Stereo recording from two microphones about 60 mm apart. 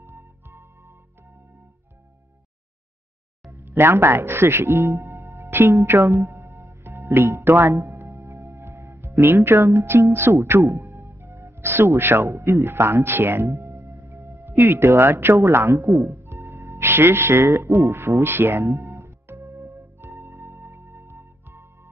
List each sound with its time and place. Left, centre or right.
0.0 s music: right
3.6 s speech: right
6.2 s music: right
9.6 s speech: right
10.8 s music: right
12.0 s speech: right
13.7 s singing bowl: right
14.6 s speech: right
19.2 s music: right
20.1 s music: right